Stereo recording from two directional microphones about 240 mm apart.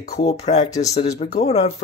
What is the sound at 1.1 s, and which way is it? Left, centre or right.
Speech, left.